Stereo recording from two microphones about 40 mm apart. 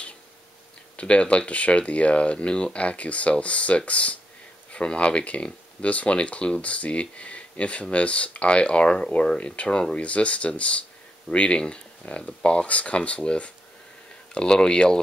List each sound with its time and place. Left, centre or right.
0.9 s speech: left